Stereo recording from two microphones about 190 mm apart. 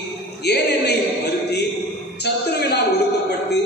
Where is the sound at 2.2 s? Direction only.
60° left (ahead or behind).